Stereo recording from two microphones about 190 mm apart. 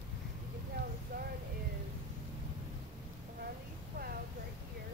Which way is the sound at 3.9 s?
60° right (ahead or behind).